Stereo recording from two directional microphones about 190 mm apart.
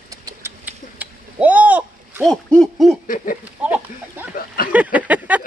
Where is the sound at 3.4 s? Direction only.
5° right (ahead or behind).